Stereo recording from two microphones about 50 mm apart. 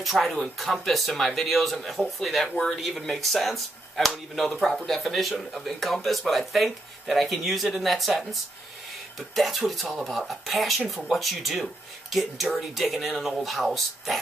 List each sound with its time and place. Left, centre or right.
0.0 s speech: centre